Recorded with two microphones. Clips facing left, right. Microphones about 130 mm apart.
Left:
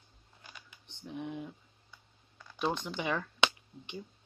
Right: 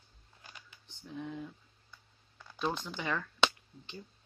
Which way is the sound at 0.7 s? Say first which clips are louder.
Left 3 dB; 20° left (ahead or behind).